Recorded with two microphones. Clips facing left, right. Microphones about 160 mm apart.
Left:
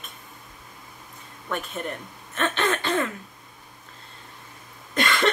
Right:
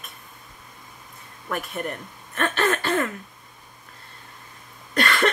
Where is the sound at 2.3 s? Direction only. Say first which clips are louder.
Right 1 dB; 10° right (ahead or behind).